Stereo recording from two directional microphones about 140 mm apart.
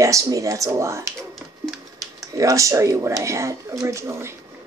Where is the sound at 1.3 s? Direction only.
Centre (ahead or behind).